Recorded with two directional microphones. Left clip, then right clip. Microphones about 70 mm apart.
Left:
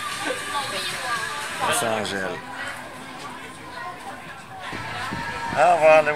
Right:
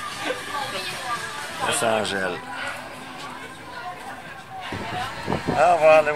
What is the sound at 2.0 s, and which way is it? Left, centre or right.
Speech, centre.